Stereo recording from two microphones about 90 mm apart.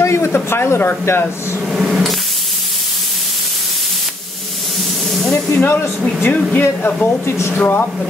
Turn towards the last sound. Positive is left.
turn(degrees=25)  # may be behind; listen again after turning